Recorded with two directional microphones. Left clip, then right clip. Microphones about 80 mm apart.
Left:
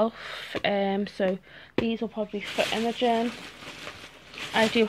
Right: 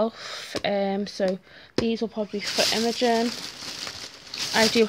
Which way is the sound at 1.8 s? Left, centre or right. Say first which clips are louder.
Right 3 dB; right.